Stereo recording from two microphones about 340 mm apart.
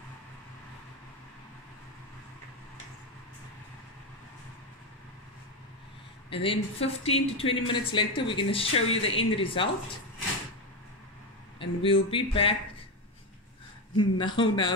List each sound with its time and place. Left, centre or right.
6.3 s speech: centre
11.6 s speech: centre
13.9 s speech: centre